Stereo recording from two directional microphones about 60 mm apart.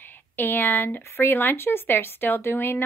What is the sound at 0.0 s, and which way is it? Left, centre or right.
Speech, left.